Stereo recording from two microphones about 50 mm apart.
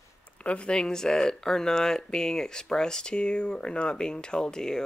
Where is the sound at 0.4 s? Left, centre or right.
Left.